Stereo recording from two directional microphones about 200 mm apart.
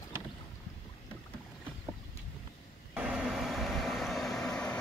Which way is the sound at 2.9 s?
5° right (ahead or behind).